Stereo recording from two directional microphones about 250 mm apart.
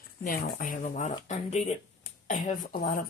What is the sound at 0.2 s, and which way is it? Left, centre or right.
Speech, left.